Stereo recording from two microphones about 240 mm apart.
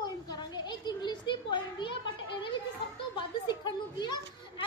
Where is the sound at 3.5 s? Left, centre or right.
Centre.